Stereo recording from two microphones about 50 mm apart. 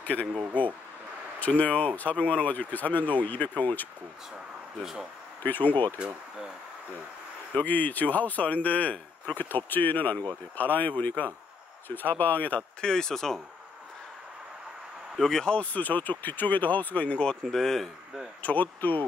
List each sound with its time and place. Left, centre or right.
0.0 s speech: left
0.3 s speech: right
1.4 s speech: left
5.4 s speech: left
7.5 s speech: left
9.4 s speech: left
12.8 s speech: centre
15.1 s speech: centre
15.4 s speech: left
17.5 s speech: centre
18.4 s speech: left